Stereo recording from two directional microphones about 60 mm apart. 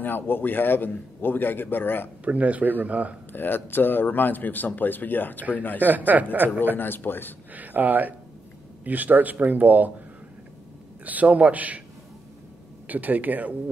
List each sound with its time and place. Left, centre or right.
0.0 s speech: left
2.2 s a man's voice: right
3.3 s speech: left
5.8 s a man's voice: right
6.8 s speech: left
7.5 s a man's voice: right
11.1 s a man's voice: right
12.8 s a man's voice: right